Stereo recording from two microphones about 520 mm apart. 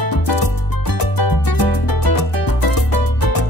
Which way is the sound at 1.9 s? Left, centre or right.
Left.